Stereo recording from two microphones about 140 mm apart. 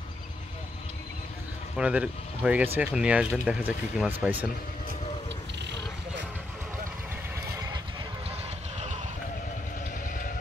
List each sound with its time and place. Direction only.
1.8 s speech: 10° right (ahead or behind)
8.3 s vehicle: 50° right (ahead or behind)